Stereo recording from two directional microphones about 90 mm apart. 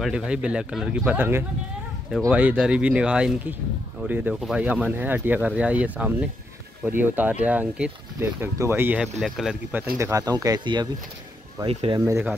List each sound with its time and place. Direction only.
0.0 s speech: 10° right (ahead or behind)
2.0 s speech: centre (ahead or behind)
2.3 s speech: 15° right (ahead or behind)
4.4 s speech: 5° right (ahead or behind)
4.6 s speech: 20° right (ahead or behind)
8.2 s speech: 30° right (ahead or behind)
9.0 s speech: 5° right (ahead or behind)
10.1 s speech: 40° right (ahead or behind)
11.6 s speech: 90° right